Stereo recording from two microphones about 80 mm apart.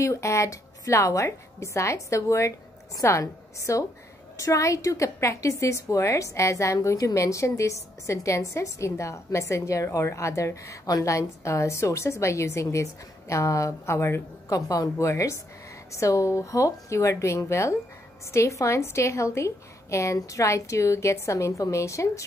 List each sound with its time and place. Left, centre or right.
0.0 s a woman's voice: left
14.5 s a woman's voice: left